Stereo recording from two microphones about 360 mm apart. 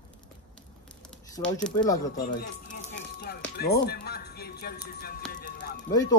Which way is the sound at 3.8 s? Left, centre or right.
Left.